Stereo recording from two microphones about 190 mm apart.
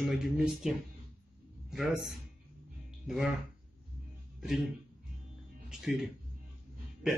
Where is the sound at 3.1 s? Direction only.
5° right (ahead or behind).